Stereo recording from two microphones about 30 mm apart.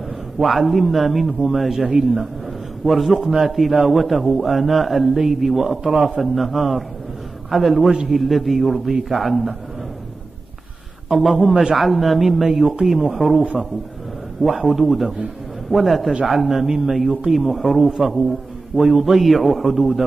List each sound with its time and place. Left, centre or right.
0.4 s a man's voice: centre
11.1 s a man's voice: centre
11.4 s a man's voice: right
11.7 s a man's voice: centre
14.4 s a man's voice: centre
18.7 s a man's voice: right
19.0 s a man's voice: centre